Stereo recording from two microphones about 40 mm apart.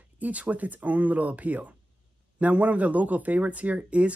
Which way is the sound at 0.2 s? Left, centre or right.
Right.